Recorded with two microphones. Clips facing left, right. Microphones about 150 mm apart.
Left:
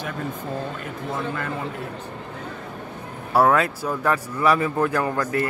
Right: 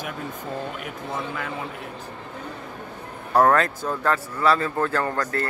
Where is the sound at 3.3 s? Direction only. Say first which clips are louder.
Even; 5° left (ahead or behind).